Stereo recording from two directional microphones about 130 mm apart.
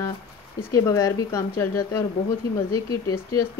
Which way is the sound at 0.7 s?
25° left (ahead or behind).